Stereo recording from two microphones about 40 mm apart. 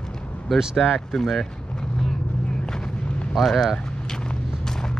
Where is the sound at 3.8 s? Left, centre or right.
Centre.